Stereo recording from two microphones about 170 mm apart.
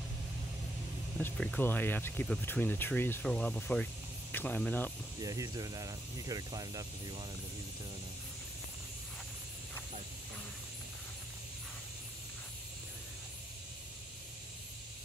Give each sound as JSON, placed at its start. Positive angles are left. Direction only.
{"t": 1.2, "sound": "speech", "side_deg": 10}
{"t": 5.2, "sound": "speech", "side_deg": -20}